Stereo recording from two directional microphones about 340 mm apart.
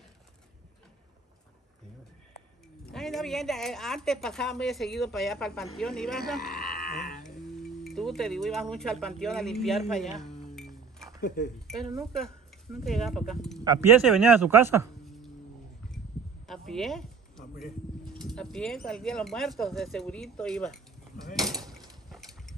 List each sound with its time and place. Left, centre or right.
2.9 s speech: centre
6.5 s a sound: left
7.8 s speech: centre
10.5 s music: centre
11.1 s speech: left
11.6 s a man's voice: centre
16.4 s a sound: centre
18.3 s speech: centre